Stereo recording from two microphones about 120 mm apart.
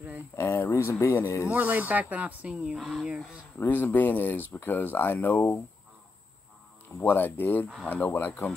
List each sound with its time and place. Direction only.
0.4 s speech: 20° left (ahead or behind)
1.5 s speech: 15° right (ahead or behind)
3.5 s speech: 15° left (ahead or behind)
7.0 s speech: 15° left (ahead or behind)